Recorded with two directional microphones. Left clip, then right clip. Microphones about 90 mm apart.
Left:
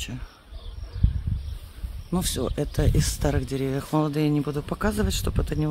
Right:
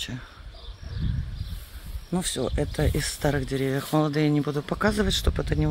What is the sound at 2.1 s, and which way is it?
Speech, 45° left (ahead or behind).